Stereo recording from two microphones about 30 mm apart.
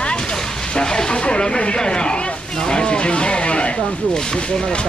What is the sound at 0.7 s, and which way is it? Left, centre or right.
Speech, left.